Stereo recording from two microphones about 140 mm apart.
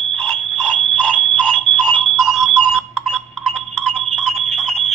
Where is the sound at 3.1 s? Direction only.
Centre (ahead or behind).